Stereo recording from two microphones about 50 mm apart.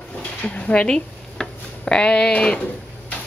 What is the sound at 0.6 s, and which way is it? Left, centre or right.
Speech, left.